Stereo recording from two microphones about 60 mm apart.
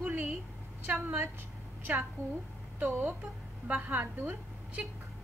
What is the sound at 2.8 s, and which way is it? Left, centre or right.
A woman's voice, right.